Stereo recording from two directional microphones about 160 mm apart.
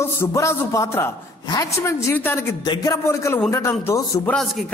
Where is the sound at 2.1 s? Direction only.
15° left (ahead or behind).